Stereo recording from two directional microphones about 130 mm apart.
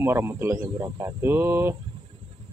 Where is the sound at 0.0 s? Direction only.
20° right (ahead or behind).